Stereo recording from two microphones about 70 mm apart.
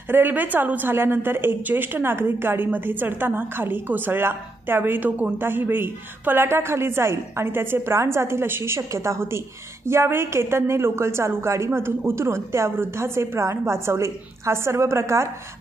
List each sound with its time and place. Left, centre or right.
0.1 s a woman's voice: right